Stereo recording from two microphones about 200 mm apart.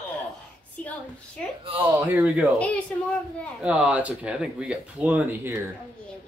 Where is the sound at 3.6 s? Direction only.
5° right (ahead or behind).